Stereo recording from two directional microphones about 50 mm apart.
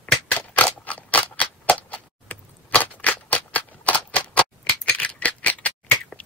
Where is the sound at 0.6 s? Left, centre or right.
Left.